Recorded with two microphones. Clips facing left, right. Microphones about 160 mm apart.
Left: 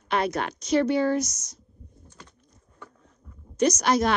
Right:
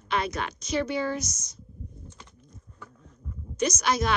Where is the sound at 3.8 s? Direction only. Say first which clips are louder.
Left 4 dB; 65° left (ahead or behind).